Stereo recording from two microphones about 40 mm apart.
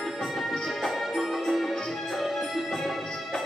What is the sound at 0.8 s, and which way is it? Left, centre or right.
Music, centre.